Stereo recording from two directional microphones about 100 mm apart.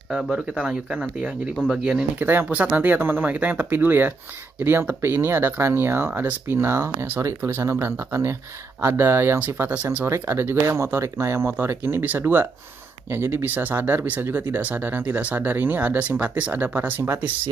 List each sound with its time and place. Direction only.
0.1 s speech: 5° right (ahead or behind)
2.1 s speech: 20° right (ahead or behind)